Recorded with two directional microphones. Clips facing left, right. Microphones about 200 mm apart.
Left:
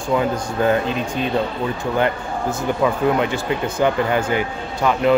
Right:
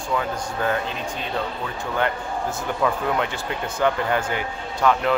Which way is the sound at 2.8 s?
10° left (ahead or behind).